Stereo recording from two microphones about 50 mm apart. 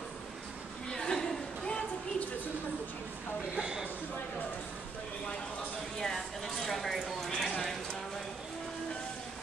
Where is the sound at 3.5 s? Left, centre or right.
Centre.